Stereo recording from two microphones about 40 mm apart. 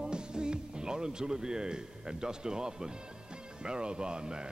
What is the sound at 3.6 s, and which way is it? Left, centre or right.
Speech, right.